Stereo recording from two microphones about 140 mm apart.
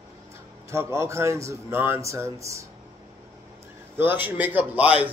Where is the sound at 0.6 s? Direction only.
20° right (ahead or behind).